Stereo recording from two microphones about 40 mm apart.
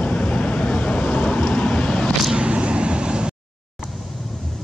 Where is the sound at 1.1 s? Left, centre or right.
Left.